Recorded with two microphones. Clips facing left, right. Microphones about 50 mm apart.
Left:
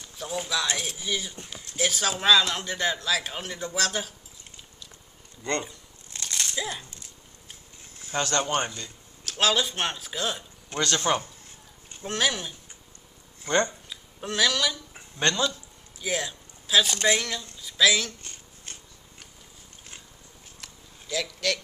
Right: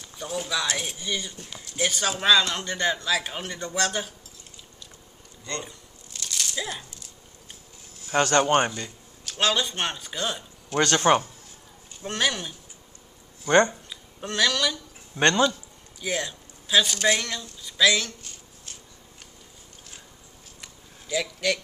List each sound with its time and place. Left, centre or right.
0.2 s a man's voice: centre
6.1 s a sound: left
6.5 s speech: centre
8.1 s a man's voice: right
9.2 s a man's voice: centre
10.8 s speech: right
12.0 s a man's voice: centre
13.5 s speech: right
13.8 s a sound: centre
15.1 s a man's voice: right
16.0 s a man's voice: centre
18.7 s tick-tock: left
20.6 s a sound: centre